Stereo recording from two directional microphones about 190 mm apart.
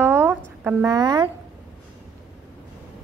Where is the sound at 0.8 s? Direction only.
20° right (ahead or behind).